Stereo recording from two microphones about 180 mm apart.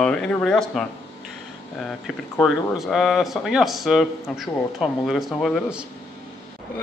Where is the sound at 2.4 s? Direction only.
Centre (ahead or behind).